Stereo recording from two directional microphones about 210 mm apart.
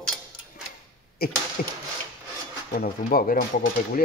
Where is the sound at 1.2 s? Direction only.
45° left (ahead or behind).